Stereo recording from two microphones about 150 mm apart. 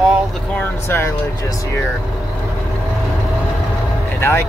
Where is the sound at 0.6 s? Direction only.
15° left (ahead or behind).